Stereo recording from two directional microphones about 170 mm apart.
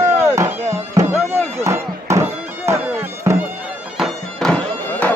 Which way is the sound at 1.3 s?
15° right (ahead or behind).